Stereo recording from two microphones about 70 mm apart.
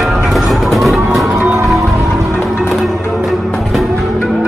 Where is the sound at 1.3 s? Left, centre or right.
Right.